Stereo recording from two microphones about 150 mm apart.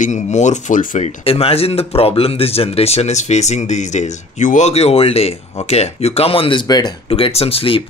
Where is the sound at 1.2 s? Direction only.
40° left (ahead or behind).